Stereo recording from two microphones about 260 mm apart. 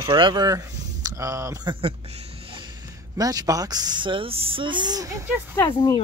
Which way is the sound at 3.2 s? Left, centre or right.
Centre.